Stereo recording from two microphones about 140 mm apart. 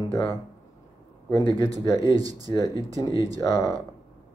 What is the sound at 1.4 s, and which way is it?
Speech, 35° left (ahead or behind).